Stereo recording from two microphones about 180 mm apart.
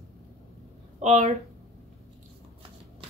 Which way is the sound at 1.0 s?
40° right (ahead or behind).